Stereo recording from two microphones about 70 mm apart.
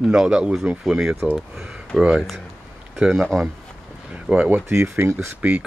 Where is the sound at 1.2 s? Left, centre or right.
Centre.